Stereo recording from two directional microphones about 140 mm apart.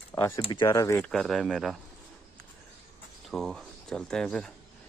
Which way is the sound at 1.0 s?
Centre (ahead or behind).